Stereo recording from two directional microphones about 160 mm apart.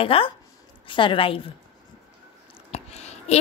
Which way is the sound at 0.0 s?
35° left (ahead or behind).